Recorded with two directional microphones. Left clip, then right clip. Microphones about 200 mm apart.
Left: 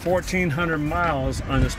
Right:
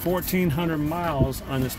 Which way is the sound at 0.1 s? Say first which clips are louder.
Left 4 dB; 10° right (ahead or behind).